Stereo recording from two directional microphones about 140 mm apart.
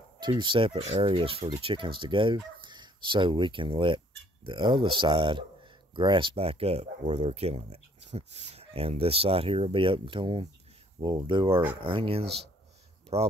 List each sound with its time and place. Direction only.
0.2 s speech: 35° right (ahead or behind)